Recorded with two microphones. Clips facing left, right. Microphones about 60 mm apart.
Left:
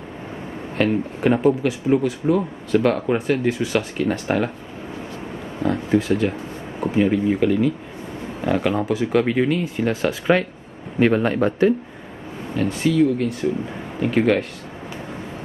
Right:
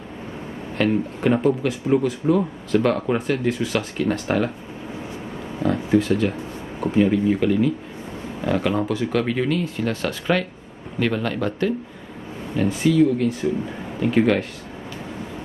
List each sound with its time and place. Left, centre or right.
0.7 s speech: centre
5.6 s speech: centre
11.0 s a man's voice: left
12.5 s speech: centre